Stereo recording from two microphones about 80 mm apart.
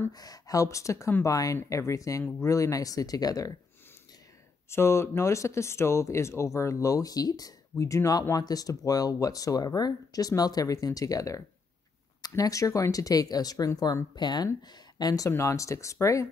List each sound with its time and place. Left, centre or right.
0.1 s speech: left
4.6 s speech: left
7.7 s speech: left
14.1 s speech: left
15.3 s speech: left